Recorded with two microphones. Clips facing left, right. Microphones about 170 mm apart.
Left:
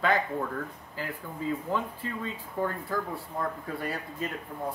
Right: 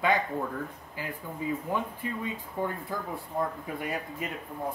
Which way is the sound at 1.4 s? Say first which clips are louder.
Left 1 dB; 15° right (ahead or behind).